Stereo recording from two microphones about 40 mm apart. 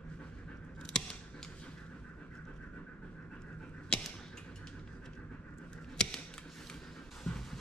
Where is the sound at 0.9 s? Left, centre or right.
Centre.